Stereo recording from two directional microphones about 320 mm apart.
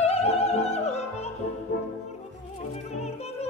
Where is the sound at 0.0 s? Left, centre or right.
Centre.